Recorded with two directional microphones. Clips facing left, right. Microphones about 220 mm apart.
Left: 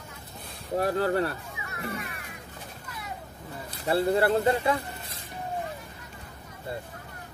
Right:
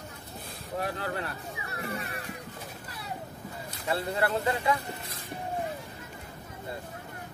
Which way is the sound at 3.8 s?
30° left (ahead or behind).